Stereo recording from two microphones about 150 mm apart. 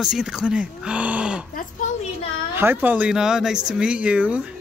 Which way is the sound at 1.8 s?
60° left (ahead or behind).